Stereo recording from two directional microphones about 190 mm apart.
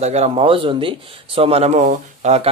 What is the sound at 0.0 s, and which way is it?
A man's voice, 35° right (ahead or behind).